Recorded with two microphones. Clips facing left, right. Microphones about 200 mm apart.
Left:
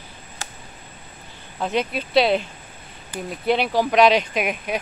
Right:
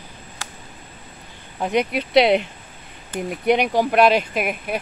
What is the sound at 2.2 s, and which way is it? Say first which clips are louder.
Speech: right 3 dB; 65° right (ahead or behind).